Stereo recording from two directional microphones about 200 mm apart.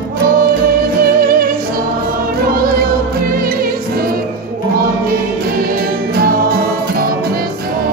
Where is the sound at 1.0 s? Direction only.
45° right (ahead or behind).